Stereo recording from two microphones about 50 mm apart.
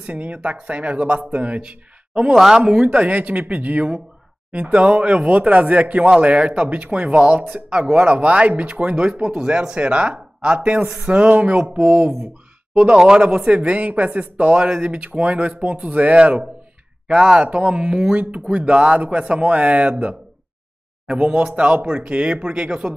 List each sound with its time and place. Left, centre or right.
0.0 s speech: right
2.3 s speech: centre
2.8 s speech: right
17.1 s speech: centre